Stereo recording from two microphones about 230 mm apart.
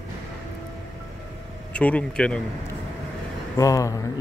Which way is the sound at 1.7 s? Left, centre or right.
Centre.